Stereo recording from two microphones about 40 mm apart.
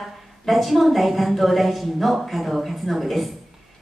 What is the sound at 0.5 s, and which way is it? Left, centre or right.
A woman's voice, centre.